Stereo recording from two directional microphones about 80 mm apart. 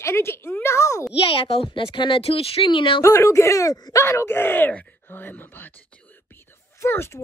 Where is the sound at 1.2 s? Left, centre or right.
Left.